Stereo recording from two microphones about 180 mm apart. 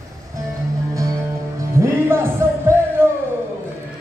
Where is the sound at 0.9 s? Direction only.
20° right (ahead or behind).